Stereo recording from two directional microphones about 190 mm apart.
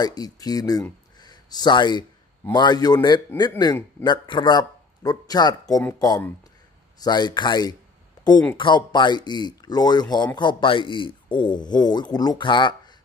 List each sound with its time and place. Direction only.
0.0 s a man's voice: 20° left (ahead or behind)